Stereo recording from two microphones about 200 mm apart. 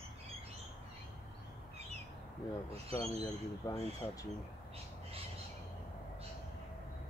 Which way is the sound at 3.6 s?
15° left (ahead or behind).